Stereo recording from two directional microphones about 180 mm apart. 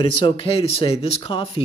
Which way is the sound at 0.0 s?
30° left (ahead or behind).